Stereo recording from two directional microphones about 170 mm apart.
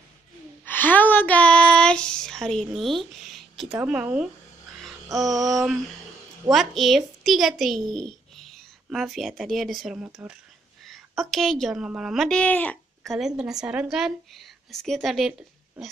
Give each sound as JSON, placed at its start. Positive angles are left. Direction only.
{"t": 0.7, "sound": "female singing", "side_deg": 10}
{"t": 3.3, "sound": "a sound", "side_deg": 0}
{"t": 3.8, "sound": "speech", "side_deg": -5}
{"t": 5.0, "sound": "music", "side_deg": -20}
{"t": 6.5, "sound": "a child's voice", "side_deg": 0}